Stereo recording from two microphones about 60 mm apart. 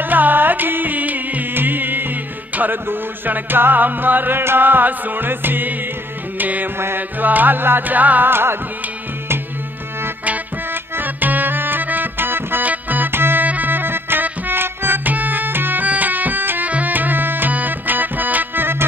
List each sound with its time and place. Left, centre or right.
0.0 s music: right
10.2 s music: right